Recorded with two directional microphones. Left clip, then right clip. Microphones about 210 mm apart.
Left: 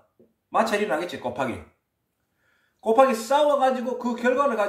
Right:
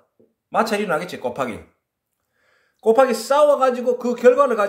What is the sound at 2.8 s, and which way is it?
Speech, 50° right (ahead or behind).